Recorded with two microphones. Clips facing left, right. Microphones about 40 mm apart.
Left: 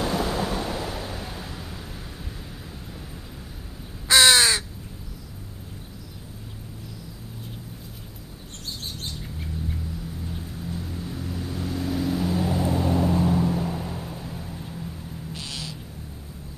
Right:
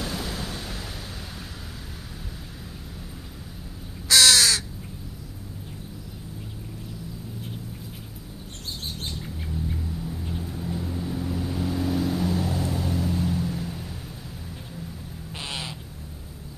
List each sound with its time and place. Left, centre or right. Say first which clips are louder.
0.0 s a sound: left 7 dB; centre
4.1 s crow: left 2 dB; left
9.2 s bird: right 1 dB; centre
10.3 s vehicle: right 4 dB; centre
15.3 s owl: right 4 dB; right